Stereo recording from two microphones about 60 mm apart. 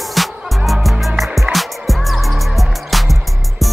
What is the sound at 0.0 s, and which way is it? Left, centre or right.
Music, centre.